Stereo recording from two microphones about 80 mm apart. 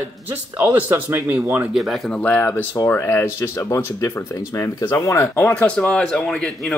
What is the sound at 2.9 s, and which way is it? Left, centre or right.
Speech, left.